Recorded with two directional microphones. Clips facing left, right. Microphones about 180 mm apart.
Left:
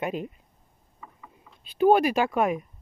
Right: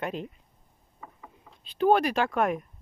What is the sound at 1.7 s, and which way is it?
Speech, 10° left (ahead or behind).